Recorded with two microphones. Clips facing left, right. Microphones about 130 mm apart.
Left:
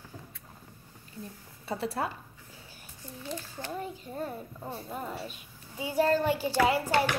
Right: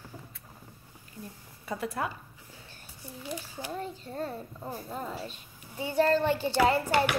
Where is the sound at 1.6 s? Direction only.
30° left (ahead or behind).